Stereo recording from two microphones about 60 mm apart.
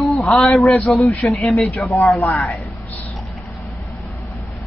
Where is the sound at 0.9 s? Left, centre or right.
Centre.